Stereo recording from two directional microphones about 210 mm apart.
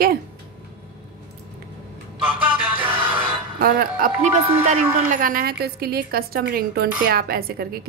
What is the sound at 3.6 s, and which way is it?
A woman's voice, 40° right (ahead or behind).